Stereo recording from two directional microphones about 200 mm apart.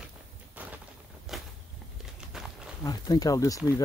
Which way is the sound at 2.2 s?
5° right (ahead or behind).